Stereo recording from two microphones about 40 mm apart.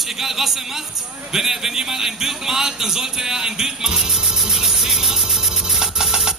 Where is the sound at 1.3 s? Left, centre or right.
Centre.